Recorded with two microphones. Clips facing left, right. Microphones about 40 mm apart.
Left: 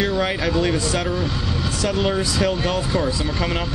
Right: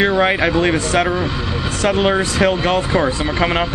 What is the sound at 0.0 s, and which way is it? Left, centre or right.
Speech, right.